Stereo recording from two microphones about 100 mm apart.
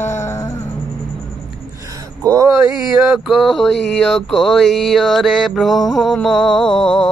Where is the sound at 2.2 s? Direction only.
35° right (ahead or behind).